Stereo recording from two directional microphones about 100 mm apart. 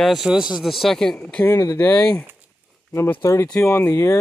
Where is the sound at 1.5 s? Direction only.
30° left (ahead or behind).